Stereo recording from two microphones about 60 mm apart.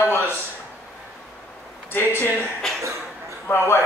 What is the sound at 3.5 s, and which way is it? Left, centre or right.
Speech, left.